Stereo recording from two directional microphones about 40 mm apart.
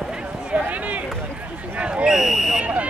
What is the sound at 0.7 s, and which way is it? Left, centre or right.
Speech, right.